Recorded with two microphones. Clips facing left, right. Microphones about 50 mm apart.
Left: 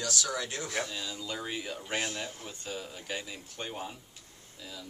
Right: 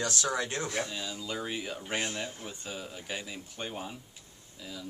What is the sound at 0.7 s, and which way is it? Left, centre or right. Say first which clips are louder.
Speech: even; centre.